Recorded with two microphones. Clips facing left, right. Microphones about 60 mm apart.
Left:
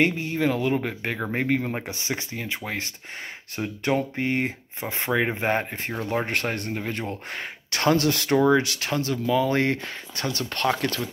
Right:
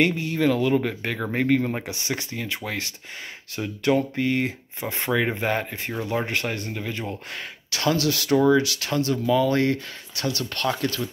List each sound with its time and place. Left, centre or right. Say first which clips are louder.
0.0 s speech: right 1 dB; left